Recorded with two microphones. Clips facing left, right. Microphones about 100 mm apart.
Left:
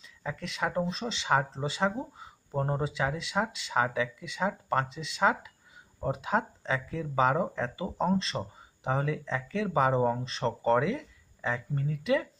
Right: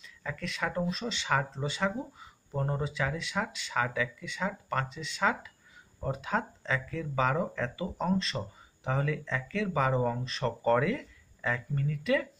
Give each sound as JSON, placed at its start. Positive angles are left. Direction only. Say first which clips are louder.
{"t": 0.0, "sound": "speech", "louder": "left 1 dB", "side_deg": 20}